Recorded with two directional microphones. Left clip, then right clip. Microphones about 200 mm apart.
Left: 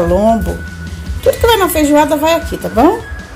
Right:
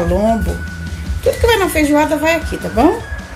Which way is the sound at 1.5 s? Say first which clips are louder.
Left 2 dB; 20° left (ahead or behind).